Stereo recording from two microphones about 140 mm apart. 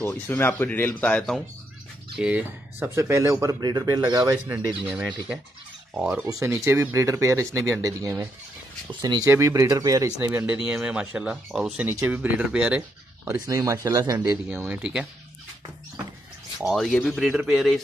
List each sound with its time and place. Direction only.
0.0 s speech: 15° left (ahead or behind)
2.1 s speech: 10° right (ahead or behind)
4.8 s speech: 5° right (ahead or behind); by 10.1 s 25° right (ahead or behind)
10.3 s speech: 10° right (ahead or behind)
13.5 s speech: 25° right (ahead or behind)
14.3 s speech: 10° right (ahead or behind)
16.5 s speech: centre (ahead or behind)